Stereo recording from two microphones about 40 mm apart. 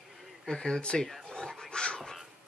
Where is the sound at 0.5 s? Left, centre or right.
Centre.